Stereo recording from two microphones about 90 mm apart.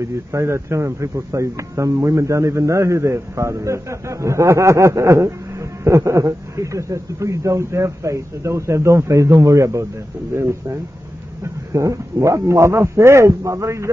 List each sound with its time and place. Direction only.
0.0 s speech: 35° right (ahead or behind)